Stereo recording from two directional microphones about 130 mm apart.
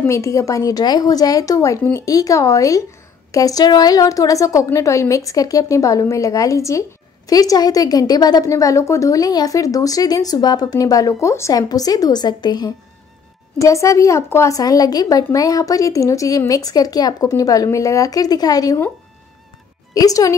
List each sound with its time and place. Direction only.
0.0 s a woman's voice: 25° left (ahead or behind)
19.9 s speech: 25° left (ahead or behind)